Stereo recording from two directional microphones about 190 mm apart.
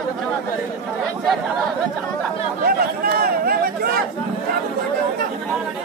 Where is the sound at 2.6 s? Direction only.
50° right (ahead or behind).